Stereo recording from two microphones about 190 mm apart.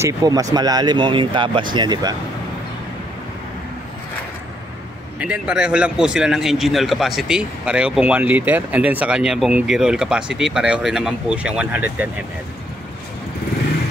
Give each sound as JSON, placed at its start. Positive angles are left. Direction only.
{"t": 0.0, "sound": "speech", "side_deg": -15}
{"t": 5.2, "sound": "a man's voice", "side_deg": -5}